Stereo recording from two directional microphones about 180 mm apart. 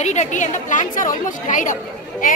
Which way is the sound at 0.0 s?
40° left (ahead or behind).